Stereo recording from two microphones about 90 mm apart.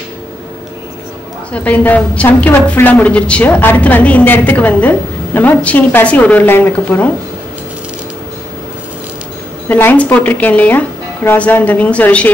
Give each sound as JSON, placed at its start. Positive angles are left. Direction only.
{"t": 1.5, "sound": "a woman's voice", "side_deg": 15}
{"t": 9.7, "sound": "a woman's voice", "side_deg": 20}